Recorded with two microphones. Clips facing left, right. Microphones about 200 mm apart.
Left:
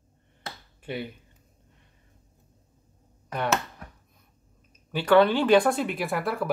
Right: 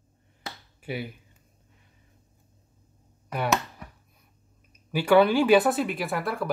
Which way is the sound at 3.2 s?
10° right (ahead or behind).